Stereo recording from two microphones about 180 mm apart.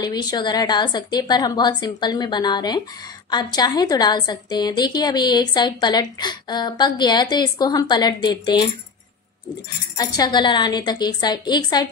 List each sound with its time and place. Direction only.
0.0 s a woman's voice: 20° left (ahead or behind)
9.9 s a woman's voice: 20° left (ahead or behind)